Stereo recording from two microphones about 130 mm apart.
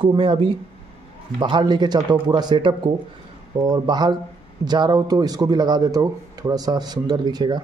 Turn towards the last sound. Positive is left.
turn(degrees=-30)  # may be behind; listen again after turning